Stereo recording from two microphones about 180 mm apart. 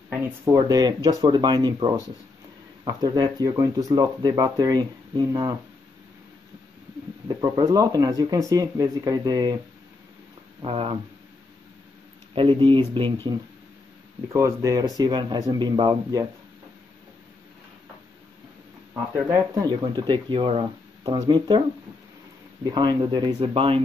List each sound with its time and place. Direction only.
0.2 s speech: 20° right (ahead or behind)
7.2 s speech: 25° right (ahead or behind)
10.6 s speech: 30° right (ahead or behind)
12.4 s speech: 30° right (ahead or behind)
14.3 s speech: 20° right (ahead or behind)
19.1 s speech: 15° right (ahead or behind)
22.7 s speech: 25° right (ahead or behind)